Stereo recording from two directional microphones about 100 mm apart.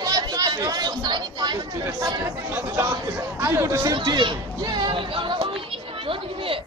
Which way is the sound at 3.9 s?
50° right (ahead or behind).